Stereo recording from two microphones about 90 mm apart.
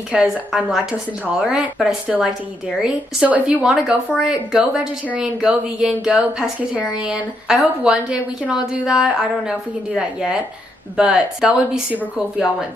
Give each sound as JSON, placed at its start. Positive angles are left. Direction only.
{"t": 0.1, "sound": "a woman's voice", "side_deg": -10}
{"t": 11.9, "sound": "speech", "side_deg": -20}